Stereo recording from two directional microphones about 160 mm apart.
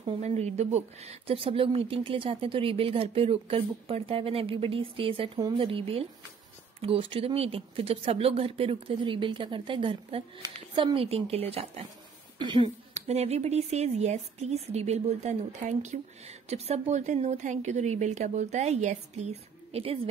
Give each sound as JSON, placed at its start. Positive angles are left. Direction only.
{"t": 0.0, "sound": "speech", "side_deg": -45}
{"t": 12.9, "sound": "speech", "side_deg": -40}